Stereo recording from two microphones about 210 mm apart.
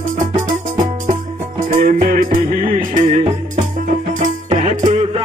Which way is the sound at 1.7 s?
40° right (ahead or behind).